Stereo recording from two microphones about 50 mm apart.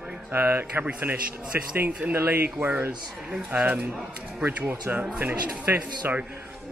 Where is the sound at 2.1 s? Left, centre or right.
Right.